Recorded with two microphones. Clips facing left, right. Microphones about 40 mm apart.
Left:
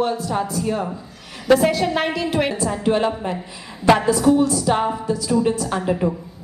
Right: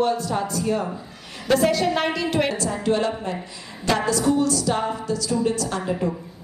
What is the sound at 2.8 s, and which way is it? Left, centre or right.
A woman's voice, left.